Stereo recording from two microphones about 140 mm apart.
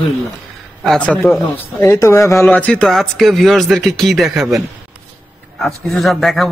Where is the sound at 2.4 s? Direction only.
10° left (ahead or behind).